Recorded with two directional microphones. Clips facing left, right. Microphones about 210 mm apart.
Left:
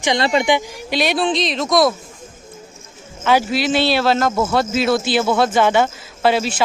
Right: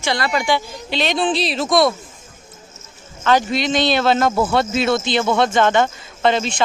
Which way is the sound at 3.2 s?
5° left (ahead or behind).